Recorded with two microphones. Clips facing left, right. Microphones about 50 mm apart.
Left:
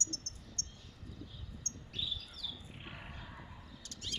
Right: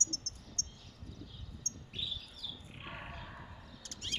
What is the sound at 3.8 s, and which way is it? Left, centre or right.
Bird, right.